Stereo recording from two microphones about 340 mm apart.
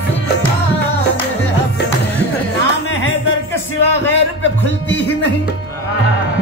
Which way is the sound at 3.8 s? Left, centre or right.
Left.